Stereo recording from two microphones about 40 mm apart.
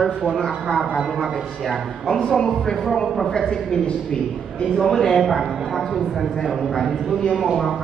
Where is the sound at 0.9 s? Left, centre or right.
Centre.